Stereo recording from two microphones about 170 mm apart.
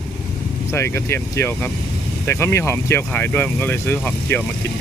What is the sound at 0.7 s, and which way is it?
Speech, 15° left (ahead or behind).